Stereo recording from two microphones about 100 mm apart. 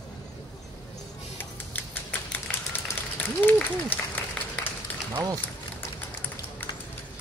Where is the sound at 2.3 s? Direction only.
20° left (ahead or behind).